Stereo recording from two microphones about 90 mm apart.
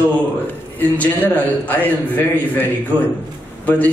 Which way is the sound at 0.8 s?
20° left (ahead or behind).